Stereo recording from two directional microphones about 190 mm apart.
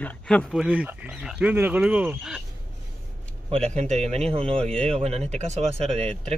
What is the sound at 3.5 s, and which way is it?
Speech, 35° right (ahead or behind).